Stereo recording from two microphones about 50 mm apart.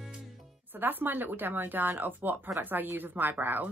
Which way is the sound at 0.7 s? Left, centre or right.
Right.